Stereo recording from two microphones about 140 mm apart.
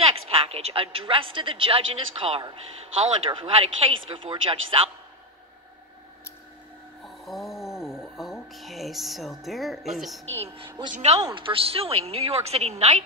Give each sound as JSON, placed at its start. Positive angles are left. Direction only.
{"t": 0.0, "sound": "a woman's voice", "side_deg": -45}
{"t": 7.2, "sound": "a sound", "side_deg": 0}
{"t": 10.4, "sound": "a woman's voice", "side_deg": -40}
{"t": 10.9, "sound": "a woman's voice", "side_deg": -55}
{"t": 11.1, "sound": "a woman's voice", "side_deg": -30}